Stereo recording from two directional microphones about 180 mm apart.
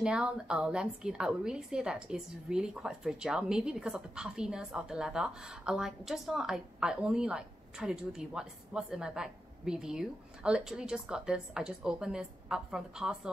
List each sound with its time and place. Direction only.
0.0 s a woman's voice: 5° right (ahead or behind)